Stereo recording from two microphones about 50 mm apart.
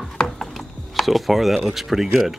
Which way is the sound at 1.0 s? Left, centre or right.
Centre.